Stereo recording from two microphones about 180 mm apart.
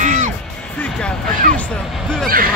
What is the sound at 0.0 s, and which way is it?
Music, 45° right (ahead or behind).